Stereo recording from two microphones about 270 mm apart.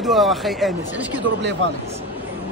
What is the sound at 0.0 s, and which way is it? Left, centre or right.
Speech, centre.